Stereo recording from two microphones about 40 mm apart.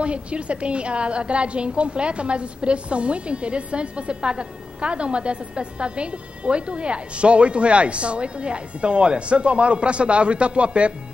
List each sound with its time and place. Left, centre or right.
0.0 s a woman's voice: right